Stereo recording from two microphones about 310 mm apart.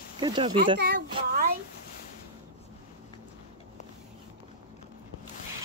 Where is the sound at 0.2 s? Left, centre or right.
Centre.